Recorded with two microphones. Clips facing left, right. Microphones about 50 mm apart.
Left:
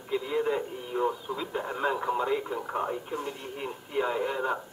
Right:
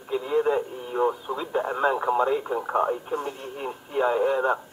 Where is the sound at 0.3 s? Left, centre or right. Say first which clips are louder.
Right 7 dB; right.